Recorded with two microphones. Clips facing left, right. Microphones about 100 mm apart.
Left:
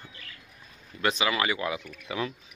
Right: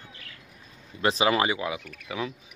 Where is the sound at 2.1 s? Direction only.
Centre (ahead or behind).